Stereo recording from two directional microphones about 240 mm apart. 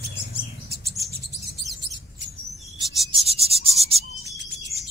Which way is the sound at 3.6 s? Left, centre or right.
Right.